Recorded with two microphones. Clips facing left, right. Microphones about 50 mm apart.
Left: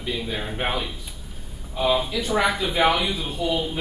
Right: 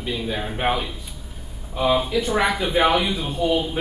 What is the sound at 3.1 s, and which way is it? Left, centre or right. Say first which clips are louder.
Speech: right 3 dB; right.